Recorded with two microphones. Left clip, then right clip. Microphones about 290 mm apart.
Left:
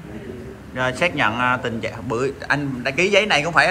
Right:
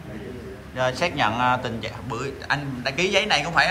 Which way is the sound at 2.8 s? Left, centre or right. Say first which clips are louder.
Left 5 dB; centre.